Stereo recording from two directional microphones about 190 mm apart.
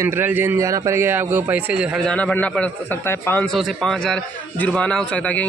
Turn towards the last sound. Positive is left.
turn(degrees=5)  # may be behind; listen again after turning